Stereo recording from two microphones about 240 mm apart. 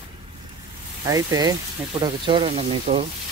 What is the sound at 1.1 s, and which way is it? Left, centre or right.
Speech, centre.